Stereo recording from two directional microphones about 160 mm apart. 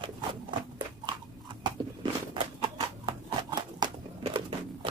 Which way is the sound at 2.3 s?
30° right (ahead or behind).